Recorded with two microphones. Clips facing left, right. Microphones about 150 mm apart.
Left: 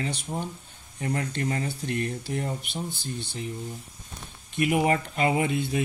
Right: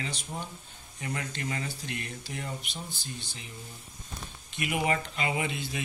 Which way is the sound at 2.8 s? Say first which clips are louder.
Left 7 dB; 55° left (ahead or behind).